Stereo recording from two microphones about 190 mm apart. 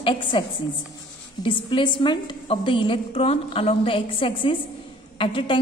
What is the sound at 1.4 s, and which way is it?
A woman's voice, 25° left (ahead or behind).